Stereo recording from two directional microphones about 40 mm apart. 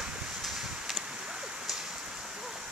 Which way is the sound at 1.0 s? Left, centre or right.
Right.